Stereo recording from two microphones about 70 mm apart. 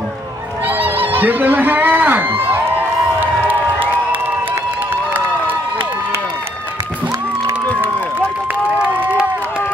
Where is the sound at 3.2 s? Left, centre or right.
Right.